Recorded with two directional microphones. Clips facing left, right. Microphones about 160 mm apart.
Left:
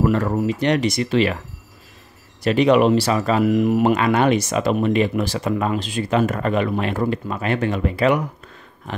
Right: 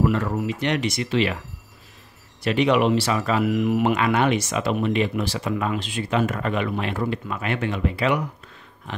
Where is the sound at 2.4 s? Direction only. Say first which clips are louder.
Left 4 dB; 40° left (ahead or behind).